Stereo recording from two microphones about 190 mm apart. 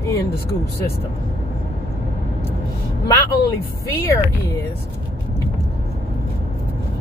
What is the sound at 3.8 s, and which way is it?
Speech, 15° left (ahead or behind).